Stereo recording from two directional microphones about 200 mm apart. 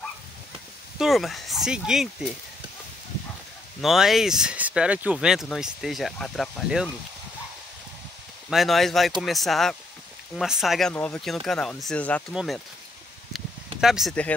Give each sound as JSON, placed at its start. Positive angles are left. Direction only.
{"t": 0.9, "sound": "speech", "side_deg": 0}
{"t": 3.8, "sound": "speech", "side_deg": 0}
{"t": 8.5, "sound": "speech", "side_deg": 0}
{"t": 13.7, "sound": "speech", "side_deg": 0}